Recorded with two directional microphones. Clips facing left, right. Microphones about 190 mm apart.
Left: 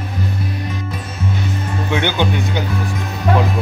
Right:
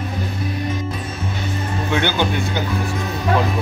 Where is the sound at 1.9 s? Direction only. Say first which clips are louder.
Left 1 dB; 15° left (ahead or behind).